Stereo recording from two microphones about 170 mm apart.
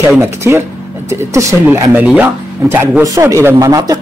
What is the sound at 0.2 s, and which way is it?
Speech, 15° right (ahead or behind).